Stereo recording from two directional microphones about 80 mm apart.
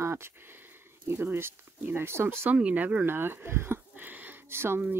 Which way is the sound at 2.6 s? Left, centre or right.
Centre.